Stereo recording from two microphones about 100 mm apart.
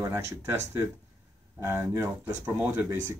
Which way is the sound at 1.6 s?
25° right (ahead or behind).